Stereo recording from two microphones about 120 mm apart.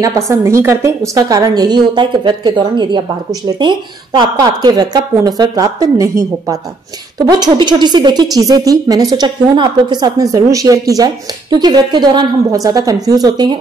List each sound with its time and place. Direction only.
0.0 s a woman's voice: 25° right (ahead or behind)